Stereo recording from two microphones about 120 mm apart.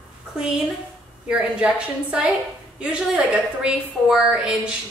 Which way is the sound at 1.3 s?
10° right (ahead or behind).